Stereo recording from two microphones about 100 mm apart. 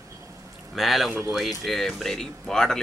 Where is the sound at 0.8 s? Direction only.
Centre (ahead or behind).